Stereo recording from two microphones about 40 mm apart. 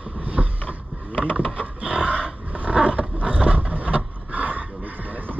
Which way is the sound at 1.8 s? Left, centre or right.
Right.